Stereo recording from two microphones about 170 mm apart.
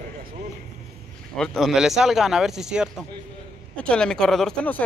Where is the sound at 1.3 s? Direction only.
5° left (ahead or behind).